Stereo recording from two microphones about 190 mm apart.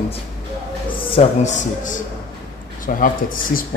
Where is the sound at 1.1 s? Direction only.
40° left (ahead or behind).